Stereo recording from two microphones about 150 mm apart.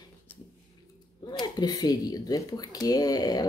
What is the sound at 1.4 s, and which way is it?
Speech, 25° left (ahead or behind).